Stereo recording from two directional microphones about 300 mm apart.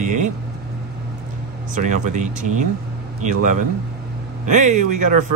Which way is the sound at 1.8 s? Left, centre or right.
Right.